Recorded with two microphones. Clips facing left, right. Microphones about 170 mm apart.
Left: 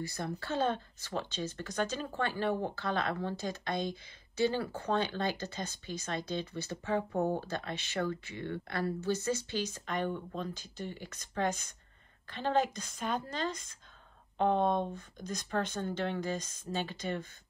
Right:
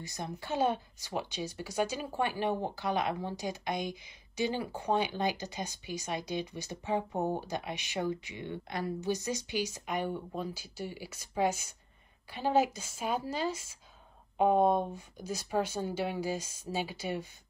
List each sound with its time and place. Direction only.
0.0 s speech: 20° right (ahead or behind)